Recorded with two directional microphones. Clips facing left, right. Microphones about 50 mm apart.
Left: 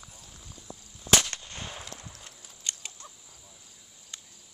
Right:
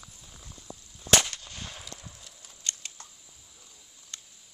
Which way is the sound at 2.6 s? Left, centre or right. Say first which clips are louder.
Right 1 dB; centre.